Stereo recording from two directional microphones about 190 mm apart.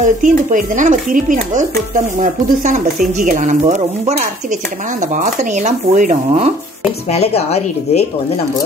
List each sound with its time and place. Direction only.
0.0 s speech: 45° right (ahead or behind)
5.1 s speech: 40° right (ahead or behind)
7.1 s speech: 35° left (ahead or behind)